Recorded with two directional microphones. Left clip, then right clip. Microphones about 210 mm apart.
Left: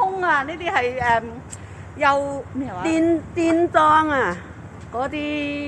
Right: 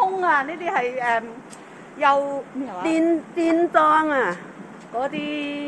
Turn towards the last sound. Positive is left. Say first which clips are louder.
# left 2 dB
turn(degrees=45)  # may be behind; listen again after turning